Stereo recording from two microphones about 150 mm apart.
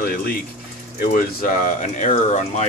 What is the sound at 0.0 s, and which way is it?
Speech, 75° left (ahead or behind).